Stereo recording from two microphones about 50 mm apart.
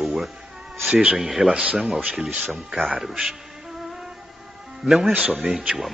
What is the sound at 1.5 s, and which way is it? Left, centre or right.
Speech, centre.